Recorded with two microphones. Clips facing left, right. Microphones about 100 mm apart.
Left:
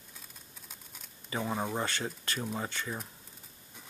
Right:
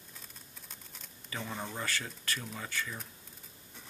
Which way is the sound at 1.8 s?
25° left (ahead or behind).